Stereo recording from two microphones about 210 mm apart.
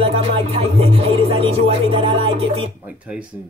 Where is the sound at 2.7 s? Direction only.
5° right (ahead or behind).